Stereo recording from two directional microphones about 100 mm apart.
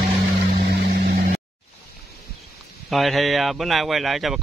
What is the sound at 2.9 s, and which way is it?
Speech, centre (ahead or behind).